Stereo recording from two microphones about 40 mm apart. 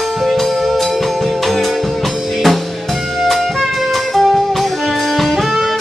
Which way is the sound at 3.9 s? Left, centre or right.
Centre.